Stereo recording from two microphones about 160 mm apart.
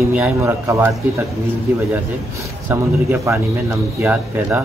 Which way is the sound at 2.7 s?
15° right (ahead or behind).